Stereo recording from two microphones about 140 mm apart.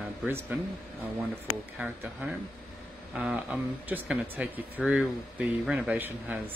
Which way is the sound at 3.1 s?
5° right (ahead or behind).